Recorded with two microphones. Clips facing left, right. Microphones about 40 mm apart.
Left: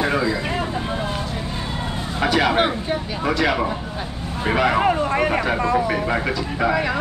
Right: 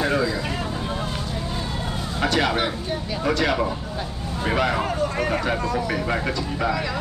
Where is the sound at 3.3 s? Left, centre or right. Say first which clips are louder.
Left 2 dB; centre.